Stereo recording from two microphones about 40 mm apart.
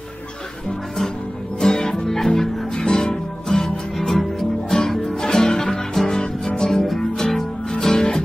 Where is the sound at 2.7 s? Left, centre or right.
Centre.